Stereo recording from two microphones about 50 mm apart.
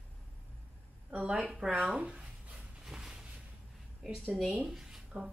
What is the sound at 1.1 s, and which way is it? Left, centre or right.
Speech, right.